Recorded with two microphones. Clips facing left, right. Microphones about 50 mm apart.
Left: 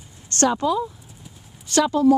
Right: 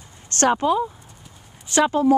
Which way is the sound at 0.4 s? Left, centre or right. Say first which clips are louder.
Right 1 dB; right.